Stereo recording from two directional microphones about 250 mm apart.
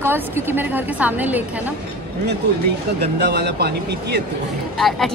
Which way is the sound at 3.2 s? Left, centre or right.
Right.